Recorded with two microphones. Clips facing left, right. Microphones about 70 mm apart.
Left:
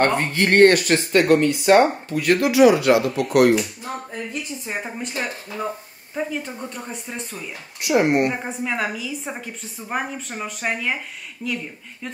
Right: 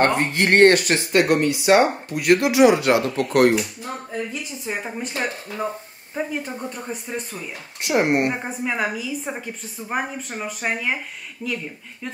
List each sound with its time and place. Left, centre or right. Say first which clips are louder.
0.0 s speech: even; right
1.3 s speech: left 3 dB; centre
2.1 s speech: even; centre
2.7 s speech: left 1 dB; right
4.8 s speech: right 1 dB; centre
7.8 s speech: left 2 dB; right
8.1 s speech: left 1 dB; right
8.5 s speech: even; centre